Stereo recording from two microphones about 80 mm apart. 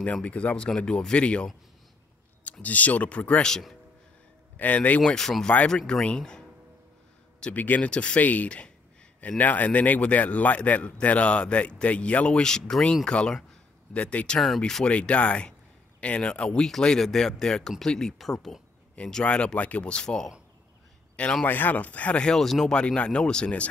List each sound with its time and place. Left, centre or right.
0.0 s a man's voice: centre
4.6 s speech: centre
5.1 s a man's voice: centre
14.9 s a man's voice: centre
21.5 s a man's voice: left